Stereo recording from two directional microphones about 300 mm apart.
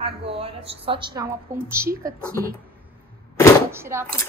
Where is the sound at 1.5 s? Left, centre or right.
Right.